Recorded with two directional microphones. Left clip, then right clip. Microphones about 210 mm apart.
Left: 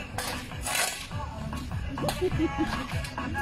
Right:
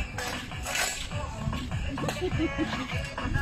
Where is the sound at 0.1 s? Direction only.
40° left (ahead or behind).